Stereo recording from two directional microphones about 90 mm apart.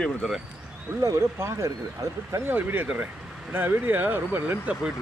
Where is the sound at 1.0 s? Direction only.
35° right (ahead or behind).